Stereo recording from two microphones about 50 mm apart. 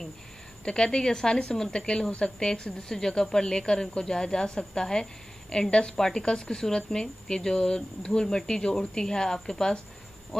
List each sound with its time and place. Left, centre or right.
0.7 s a woman's voice: centre